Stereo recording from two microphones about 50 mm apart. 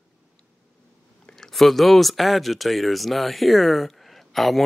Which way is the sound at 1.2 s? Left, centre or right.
Centre.